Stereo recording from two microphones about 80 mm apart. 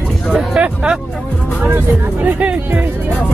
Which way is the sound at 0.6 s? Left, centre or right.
Centre.